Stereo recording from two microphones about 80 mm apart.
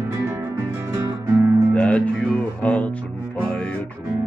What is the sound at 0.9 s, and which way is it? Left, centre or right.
Music, right.